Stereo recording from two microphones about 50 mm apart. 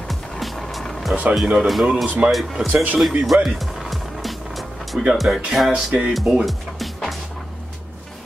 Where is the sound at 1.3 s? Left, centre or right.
Centre.